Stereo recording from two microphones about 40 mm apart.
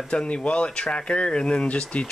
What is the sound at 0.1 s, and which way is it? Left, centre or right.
Speech, left.